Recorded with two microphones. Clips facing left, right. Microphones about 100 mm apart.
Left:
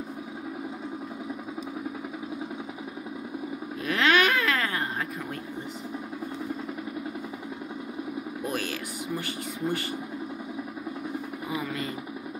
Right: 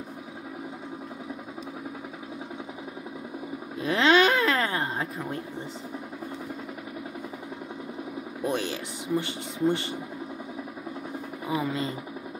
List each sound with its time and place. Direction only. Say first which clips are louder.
3.8 s a sound: right 3 dB; 25° right (ahead or behind)
8.5 s speech: right 5 dB; 25° right (ahead or behind)
11.4 s speech: right 5 dB; 25° right (ahead or behind)